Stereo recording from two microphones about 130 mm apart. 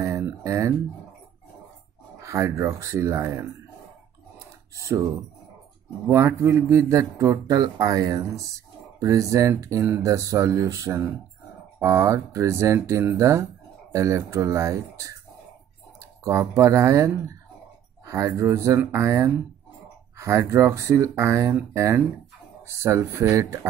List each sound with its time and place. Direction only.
0.0 s a sound: 25° right (ahead or behind)
2.1 s speech: 25° right (ahead or behind)
4.7 s speech: 25° right (ahead or behind)
16.3 s speech: 20° right (ahead or behind)